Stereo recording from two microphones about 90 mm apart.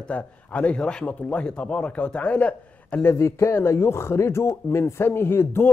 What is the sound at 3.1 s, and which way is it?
A man's voice, 30° left (ahead or behind).